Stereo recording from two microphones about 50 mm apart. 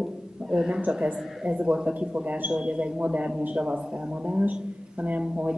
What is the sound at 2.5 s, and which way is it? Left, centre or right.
Speech, right.